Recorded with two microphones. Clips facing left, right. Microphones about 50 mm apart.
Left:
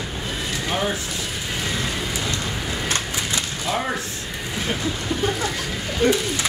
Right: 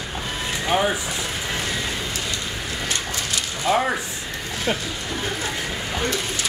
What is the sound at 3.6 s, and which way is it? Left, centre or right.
Speech, centre.